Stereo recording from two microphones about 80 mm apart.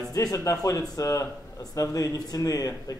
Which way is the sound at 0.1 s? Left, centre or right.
Left.